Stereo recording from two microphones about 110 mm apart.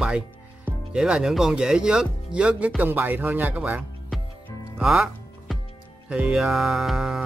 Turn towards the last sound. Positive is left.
turn(degrees=-5)  # may be behind; listen again after turning